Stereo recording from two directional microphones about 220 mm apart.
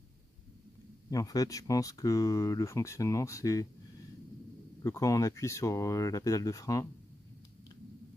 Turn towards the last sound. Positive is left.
turn(degrees=15)  # may be behind; listen again after turning